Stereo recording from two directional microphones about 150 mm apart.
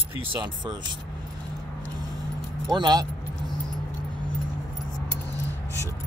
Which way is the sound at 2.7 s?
30° right (ahead or behind).